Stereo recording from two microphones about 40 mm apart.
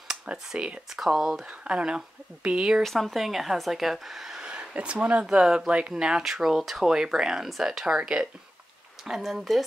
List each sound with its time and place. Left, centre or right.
0.3 s speech: right
0.8 s speech: centre
1.5 s speech: right
2.8 s speech: centre
4.4 s a sound: right
4.7 s speech: right
5.2 s speech: right
9.1 s speech: centre